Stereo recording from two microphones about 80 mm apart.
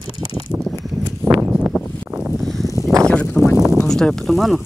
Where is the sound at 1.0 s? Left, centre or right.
Right.